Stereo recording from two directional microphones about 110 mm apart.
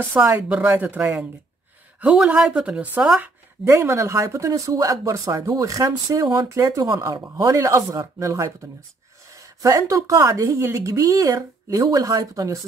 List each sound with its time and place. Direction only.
0.2 s a woman's voice: 10° right (ahead or behind)
3.6 s a woman's voice: 20° right (ahead or behind)
9.6 s a woman's voice: 30° right (ahead or behind)